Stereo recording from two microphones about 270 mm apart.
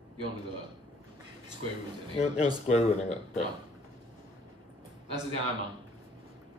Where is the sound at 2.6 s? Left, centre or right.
Left.